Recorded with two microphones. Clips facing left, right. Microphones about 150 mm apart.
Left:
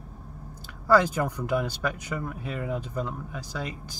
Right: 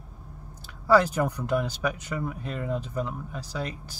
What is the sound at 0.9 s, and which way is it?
Speech, 5° right (ahead or behind).